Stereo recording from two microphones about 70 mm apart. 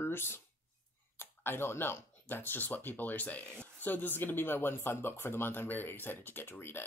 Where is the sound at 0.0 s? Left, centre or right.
Left.